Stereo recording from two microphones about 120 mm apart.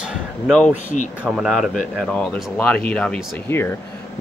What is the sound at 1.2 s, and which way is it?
Speech, 5° right (ahead or behind).